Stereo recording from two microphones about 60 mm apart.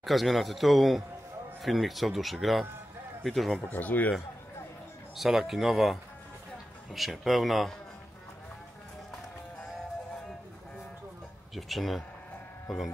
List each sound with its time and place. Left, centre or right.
0.0 s a man's voice: centre
3.6 s speech: left
5.1 s a man's voice: centre
11.5 s a man's voice: centre